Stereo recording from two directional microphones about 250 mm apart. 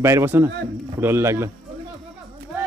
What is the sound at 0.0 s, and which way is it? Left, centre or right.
Speech, centre.